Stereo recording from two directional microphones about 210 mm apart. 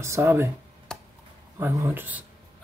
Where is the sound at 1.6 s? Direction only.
15° right (ahead or behind).